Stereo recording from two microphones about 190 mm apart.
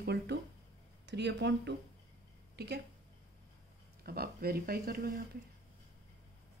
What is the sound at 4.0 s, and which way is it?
Speech, 55° right (ahead or behind).